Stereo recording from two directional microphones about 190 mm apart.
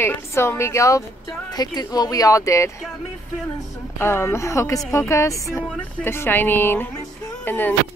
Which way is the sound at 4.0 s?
15° left (ahead or behind).